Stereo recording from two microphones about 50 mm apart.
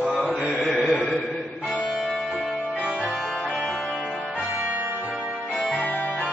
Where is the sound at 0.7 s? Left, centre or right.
Centre.